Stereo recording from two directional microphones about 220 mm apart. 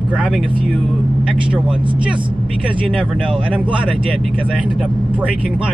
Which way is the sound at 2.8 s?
5° right (ahead or behind).